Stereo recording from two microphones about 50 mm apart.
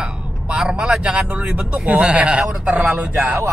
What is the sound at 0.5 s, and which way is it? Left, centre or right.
Vehicle, right.